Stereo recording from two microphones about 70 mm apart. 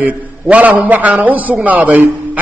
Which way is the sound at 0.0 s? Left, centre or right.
Right.